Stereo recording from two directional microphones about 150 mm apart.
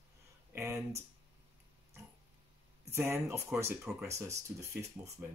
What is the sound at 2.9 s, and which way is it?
Speech, 15° right (ahead or behind).